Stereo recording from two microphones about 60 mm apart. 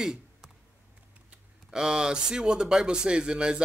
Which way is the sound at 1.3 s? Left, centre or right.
Centre.